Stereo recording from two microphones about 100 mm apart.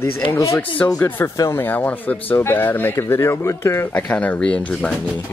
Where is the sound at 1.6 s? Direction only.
20° left (ahead or behind).